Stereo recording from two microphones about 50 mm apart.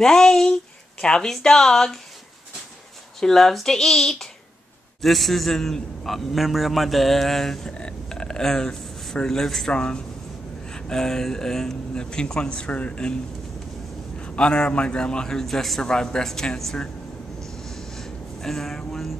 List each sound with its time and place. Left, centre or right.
0.0 s speech: centre
3.2 s a man's voice: centre
7.7 s speech: centre
9.7 s speech: centre
14.2 s speech: left; by 15.9 s centre
15.9 s speech: centre
17.4 s a sound: centre